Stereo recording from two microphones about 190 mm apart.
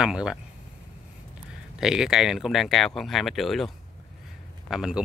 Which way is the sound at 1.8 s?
5° right (ahead or behind).